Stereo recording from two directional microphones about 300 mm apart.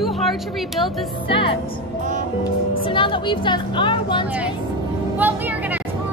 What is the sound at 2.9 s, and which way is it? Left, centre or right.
A woman's voice, centre.